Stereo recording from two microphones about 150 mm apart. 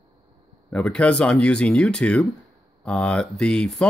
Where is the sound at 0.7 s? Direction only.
5° left (ahead or behind).